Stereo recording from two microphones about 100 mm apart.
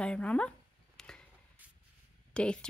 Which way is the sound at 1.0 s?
5° left (ahead or behind).